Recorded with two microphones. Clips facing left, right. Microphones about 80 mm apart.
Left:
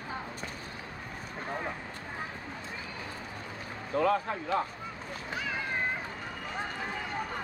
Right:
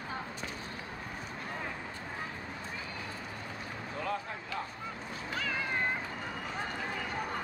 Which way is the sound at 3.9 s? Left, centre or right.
Left.